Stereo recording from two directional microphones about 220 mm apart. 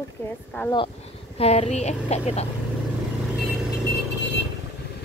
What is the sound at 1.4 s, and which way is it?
Speech, 30° left (ahead or behind).